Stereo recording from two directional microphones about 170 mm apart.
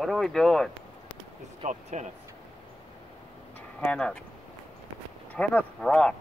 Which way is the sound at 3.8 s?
5° left (ahead or behind).